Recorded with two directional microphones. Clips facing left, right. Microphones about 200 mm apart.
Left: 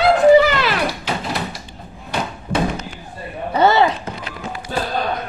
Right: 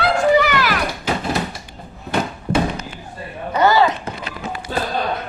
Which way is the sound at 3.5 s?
25° left (ahead or behind).